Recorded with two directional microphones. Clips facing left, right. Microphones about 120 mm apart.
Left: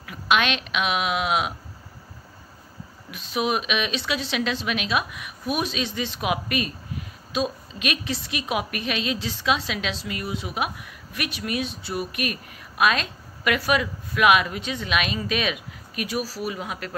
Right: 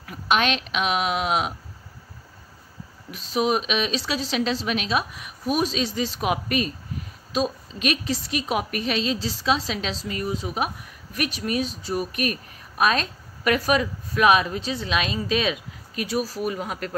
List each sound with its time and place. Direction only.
0.0 s speech: 35° right (ahead or behind)
3.1 s a woman's voice: 35° right (ahead or behind)